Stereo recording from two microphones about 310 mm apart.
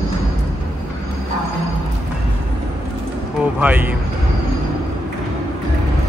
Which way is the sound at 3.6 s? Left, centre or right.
Centre.